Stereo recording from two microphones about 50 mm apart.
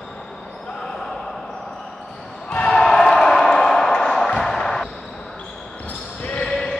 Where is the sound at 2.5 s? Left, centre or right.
Centre.